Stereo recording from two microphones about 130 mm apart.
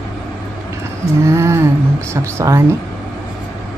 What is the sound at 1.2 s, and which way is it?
A woman's voice, 20° right (ahead or behind).